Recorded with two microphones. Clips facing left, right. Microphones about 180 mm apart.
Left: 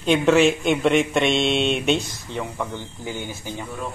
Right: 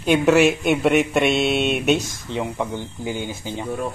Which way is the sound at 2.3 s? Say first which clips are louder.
Right 3 dB; 15° right (ahead or behind).